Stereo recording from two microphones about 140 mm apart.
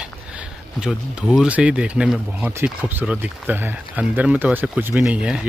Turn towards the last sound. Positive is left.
turn(degrees=-5)  # may be behind; listen again after turning